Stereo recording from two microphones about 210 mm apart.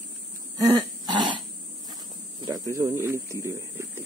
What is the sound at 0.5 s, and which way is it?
Throat clearing, 20° right (ahead or behind).